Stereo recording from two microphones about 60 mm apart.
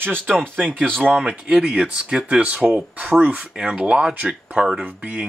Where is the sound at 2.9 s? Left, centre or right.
Right.